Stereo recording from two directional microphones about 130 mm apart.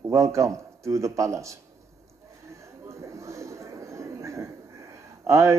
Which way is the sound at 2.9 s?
25° right (ahead or behind).